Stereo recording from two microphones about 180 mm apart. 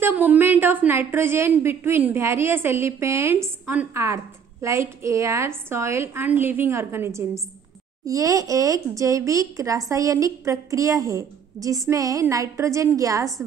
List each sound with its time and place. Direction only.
0.0 s a woman's voice: 10° right (ahead or behind)